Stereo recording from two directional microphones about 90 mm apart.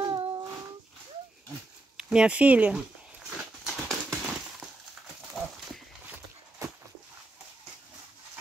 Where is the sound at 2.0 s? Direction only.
10° right (ahead or behind).